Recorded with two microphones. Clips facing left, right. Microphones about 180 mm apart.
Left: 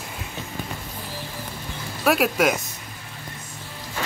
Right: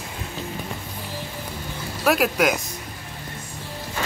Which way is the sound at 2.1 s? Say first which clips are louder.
Even; centre (ahead or behind).